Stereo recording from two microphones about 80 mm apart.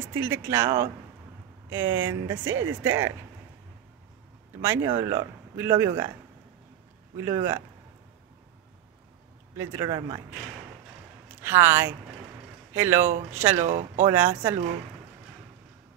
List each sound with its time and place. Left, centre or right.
0.0 s speech: right
4.6 s speech: right
7.2 s speech: right
9.6 s speech: right
11.4 s speech: right